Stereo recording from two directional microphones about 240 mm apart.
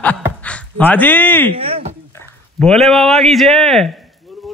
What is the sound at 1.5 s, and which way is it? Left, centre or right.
Speech, right.